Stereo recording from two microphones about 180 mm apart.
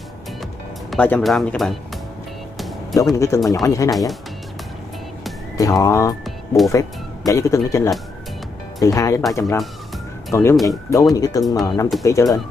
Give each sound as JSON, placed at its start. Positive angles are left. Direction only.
{"t": 0.8, "sound": "speech", "side_deg": 10}
{"t": 2.5, "sound": "music", "side_deg": 0}
{"t": 3.0, "sound": "speech", "side_deg": 15}
{"t": 3.3, "sound": "speech", "side_deg": 0}
{"t": 3.6, "sound": "speech", "side_deg": 20}
{"t": 5.6, "sound": "speech", "side_deg": 20}
{"t": 6.2, "sound": "music", "side_deg": 0}
{"t": 6.7, "sound": "speech", "side_deg": 20}
{"t": 10.5, "sound": "speech", "side_deg": 0}
{"t": 11.1, "sound": "speech", "side_deg": 20}